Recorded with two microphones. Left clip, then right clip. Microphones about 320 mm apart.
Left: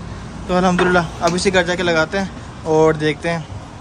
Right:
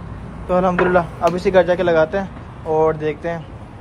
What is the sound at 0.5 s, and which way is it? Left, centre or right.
Speech, centre.